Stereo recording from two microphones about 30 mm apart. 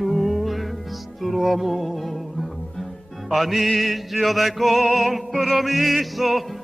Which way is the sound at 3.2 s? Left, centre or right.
Centre.